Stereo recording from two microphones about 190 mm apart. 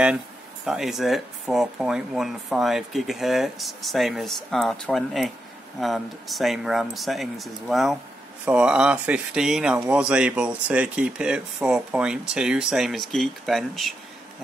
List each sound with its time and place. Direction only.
0.7 s speech: centre (ahead or behind)